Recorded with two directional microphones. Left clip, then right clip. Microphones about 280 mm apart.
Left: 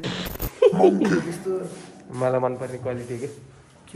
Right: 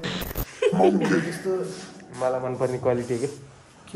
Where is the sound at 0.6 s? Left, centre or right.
Centre.